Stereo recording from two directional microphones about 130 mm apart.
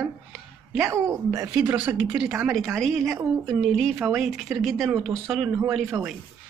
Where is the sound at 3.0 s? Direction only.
25° right (ahead or behind).